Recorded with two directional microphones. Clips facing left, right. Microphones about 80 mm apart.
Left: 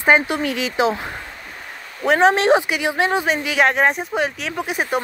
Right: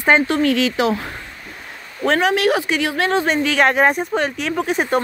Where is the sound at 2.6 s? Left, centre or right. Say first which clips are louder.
Right 1 dB; centre.